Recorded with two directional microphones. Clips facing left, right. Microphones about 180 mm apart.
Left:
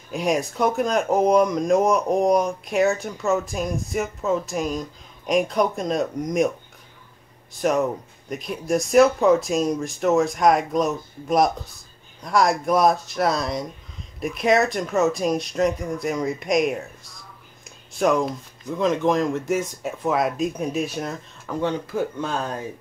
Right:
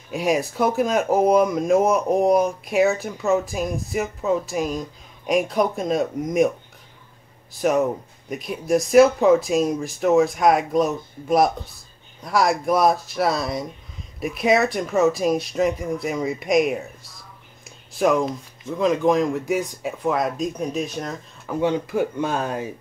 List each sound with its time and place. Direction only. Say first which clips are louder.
0.1 s speech: right 1 dB; centre (ahead or behind)
7.6 s speech: right 1 dB; centre (ahead or behind)
17.6 s a sound: right 1 dB; centre (ahead or behind)
18.8 s speech: right 2 dB; centre (ahead or behind)
21.5 s speech: right 3 dB; 10° right (ahead or behind)